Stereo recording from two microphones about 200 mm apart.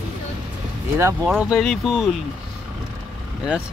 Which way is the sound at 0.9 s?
10° right (ahead or behind).